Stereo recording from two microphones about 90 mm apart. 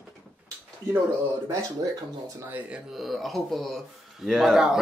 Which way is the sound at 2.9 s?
Centre (ahead or behind).